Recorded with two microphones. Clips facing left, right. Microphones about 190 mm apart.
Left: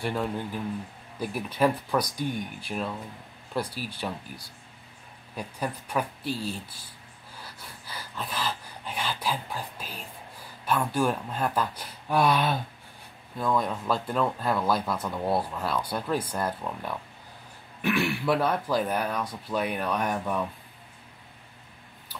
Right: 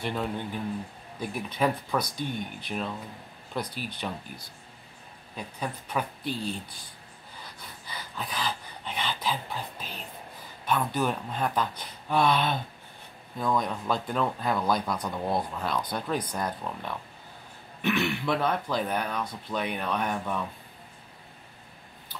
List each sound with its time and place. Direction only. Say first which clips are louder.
0.0 s speech: left 1 dB; 5° left (ahead or behind)
3.6 s speech: even; 35° left (ahead or behind)
5.3 s speech: left 2 dB; 5° left (ahead or behind)
7.4 s a sound: even; 10° left (ahead or behind)
10.6 s speech: left 2 dB; 10° left (ahead or behind)